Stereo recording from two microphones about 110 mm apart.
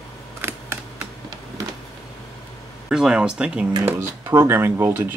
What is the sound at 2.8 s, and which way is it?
Speech, 10° right (ahead or behind).